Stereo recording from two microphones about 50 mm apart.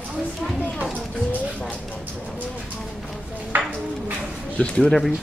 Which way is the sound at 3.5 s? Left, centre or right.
Right.